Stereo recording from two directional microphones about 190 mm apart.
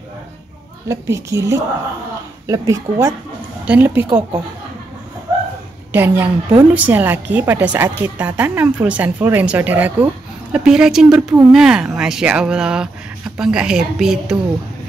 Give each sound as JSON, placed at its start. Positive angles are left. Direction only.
{"t": 0.8, "sound": "a woman's voice", "side_deg": -15}
{"t": 5.9, "sound": "a woman's voice", "side_deg": -10}